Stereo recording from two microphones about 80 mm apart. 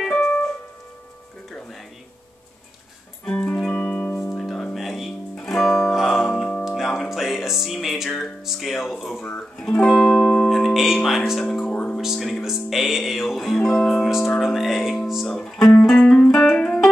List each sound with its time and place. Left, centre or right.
0.0 s keyboard: centre
3.3 s music: centre
4.4 s guitar: centre
6.6 s music: centre
9.8 s music: centre
12.0 s music: centre
15.2 s music: centre